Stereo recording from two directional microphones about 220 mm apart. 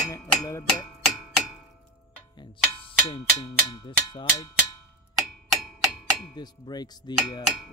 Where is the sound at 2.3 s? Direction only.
20° left (ahead or behind).